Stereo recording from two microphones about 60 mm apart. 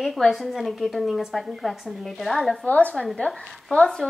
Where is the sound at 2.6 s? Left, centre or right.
Left.